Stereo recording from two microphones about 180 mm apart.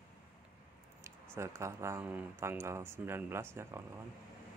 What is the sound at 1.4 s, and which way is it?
Speech, 15° right (ahead or behind).